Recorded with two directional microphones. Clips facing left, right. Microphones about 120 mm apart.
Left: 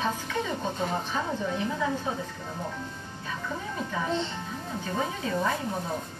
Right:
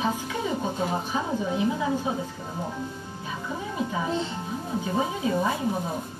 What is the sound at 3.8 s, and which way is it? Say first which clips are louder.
A woman's voice: right 2 dB; 10° right (ahead or behind).